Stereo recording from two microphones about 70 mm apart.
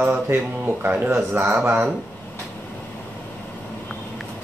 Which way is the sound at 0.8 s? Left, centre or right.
Right.